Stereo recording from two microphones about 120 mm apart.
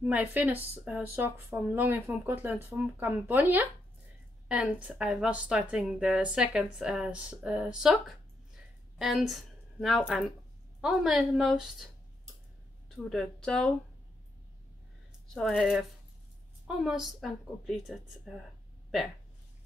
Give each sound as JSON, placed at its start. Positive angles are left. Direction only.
{"t": 0.0, "sound": "a woman's voice", "side_deg": -10}
{"t": 12.9, "sound": "a woman's voice", "side_deg": 5}
{"t": 15.3, "sound": "a woman's voice", "side_deg": 0}